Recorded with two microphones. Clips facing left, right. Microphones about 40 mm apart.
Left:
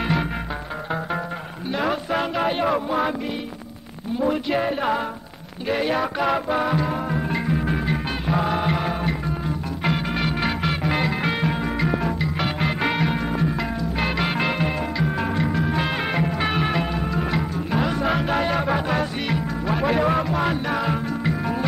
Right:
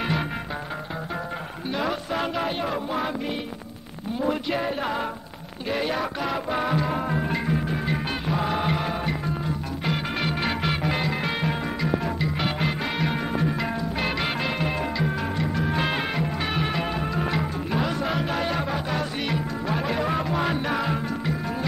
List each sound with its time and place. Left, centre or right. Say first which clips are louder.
1.7 s speech: left 3 dB; centre
2.1 s music: left 4 dB; centre
4.6 s music: left 4 dB; centre
6.5 s music: left 2 dB; centre
15.1 s music: left 4 dB; centre
15.5 s music: left 2 dB; centre
16.3 s music: left 4 dB; centre
16.8 s music: left 2 dB; centre
17.7 s music: left 4 dB; centre
19.2 s music: left 2 dB; centre
20.2 s music: left 2 dB; centre